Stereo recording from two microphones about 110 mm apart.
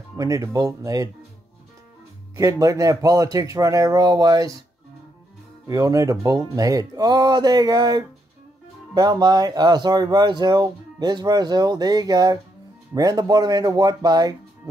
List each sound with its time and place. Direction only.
0.2 s speech: 30° right (ahead or behind)
2.3 s speech: 30° right (ahead or behind)
5.7 s speech: 30° right (ahead or behind)